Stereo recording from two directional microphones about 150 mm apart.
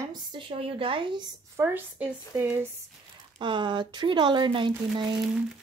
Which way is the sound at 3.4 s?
30° right (ahead or behind).